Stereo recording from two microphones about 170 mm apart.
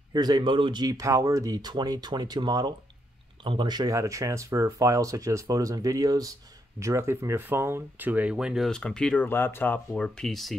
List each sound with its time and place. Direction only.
0.1 s speech: 25° right (ahead or behind); by 10.6 s centre (ahead or behind)